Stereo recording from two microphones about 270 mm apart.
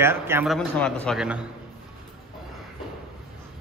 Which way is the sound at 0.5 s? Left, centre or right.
Centre.